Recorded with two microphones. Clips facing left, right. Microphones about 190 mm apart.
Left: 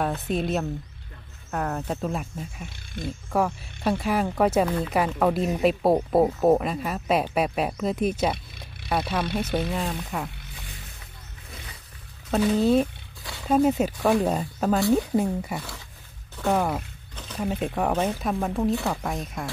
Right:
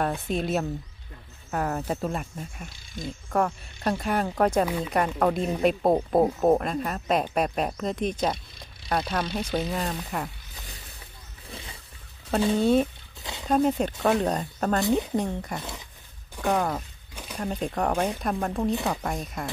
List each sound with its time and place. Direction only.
0.3 s speech: centre (ahead or behind)
12.5 s speech: centre (ahead or behind)
13.2 s a sound: 20° right (ahead or behind)
13.5 s speech: 5° left (ahead or behind)
14.9 s speech: 20° right (ahead or behind)
15.1 s speech: 5° left (ahead or behind)
17.1 s a sound: 10° right (ahead or behind)
17.4 s speech: 5° left (ahead or behind)